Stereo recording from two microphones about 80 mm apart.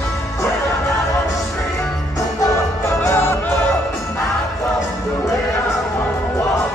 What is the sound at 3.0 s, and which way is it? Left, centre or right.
Music, left.